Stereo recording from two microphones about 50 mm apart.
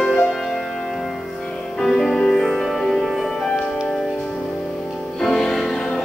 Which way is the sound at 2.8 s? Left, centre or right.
Centre.